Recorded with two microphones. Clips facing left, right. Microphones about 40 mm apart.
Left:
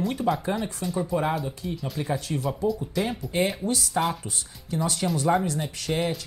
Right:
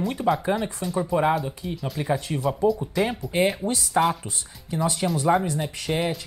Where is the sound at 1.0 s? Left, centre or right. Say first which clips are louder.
Right 4 dB; centre.